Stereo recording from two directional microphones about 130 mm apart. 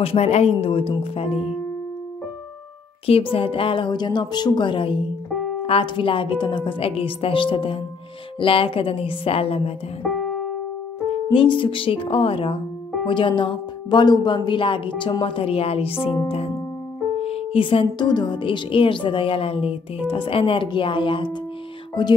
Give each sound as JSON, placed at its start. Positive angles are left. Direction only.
{"t": 0.0, "sound": "a woman's voice", "side_deg": 50}
{"t": 3.1, "sound": "a woman's voice", "side_deg": 45}
{"t": 11.3, "sound": "a woman's voice", "side_deg": 40}
{"t": 17.2, "sound": "speech", "side_deg": 50}